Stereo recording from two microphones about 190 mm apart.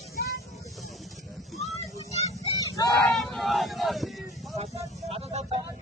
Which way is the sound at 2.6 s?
20° left (ahead or behind).